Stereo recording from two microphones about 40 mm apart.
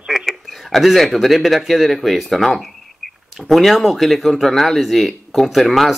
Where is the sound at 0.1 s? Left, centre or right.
Centre.